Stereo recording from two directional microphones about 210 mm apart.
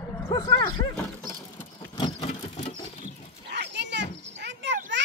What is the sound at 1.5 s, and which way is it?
Vehicle, 20° left (ahead or behind).